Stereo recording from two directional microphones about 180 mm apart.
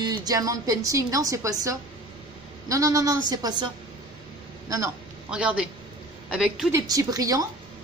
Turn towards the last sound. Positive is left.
turn(degrees=-20)  # may be behind; listen again after turning